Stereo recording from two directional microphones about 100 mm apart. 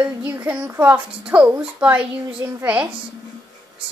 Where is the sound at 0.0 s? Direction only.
20° right (ahead or behind).